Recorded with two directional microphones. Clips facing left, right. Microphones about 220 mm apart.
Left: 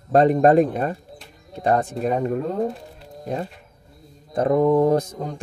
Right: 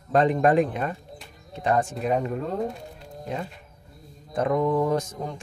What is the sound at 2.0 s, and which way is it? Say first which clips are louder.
Speech: left 3 dB; 40° left (ahead or behind).